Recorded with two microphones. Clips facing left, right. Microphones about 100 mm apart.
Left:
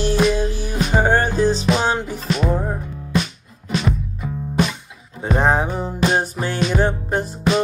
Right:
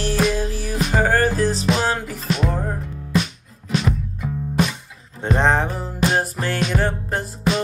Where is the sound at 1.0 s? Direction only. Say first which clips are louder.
Left 1 dB; 25° left (ahead or behind).